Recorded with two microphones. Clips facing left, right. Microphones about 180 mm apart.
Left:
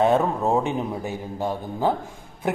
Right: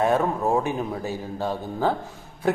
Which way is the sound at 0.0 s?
25° left (ahead or behind).